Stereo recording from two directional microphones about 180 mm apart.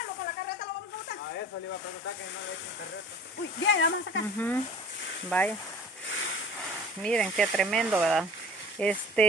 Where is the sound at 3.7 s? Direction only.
90° left.